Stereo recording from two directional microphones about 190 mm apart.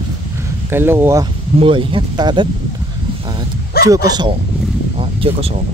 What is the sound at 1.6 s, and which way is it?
Speech, 25° right (ahead or behind).